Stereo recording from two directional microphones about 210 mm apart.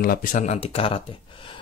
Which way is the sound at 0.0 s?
40° left (ahead or behind).